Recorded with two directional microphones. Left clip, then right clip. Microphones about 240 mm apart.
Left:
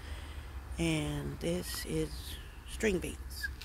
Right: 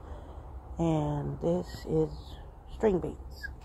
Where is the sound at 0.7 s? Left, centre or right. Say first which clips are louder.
Right 4 dB; centre.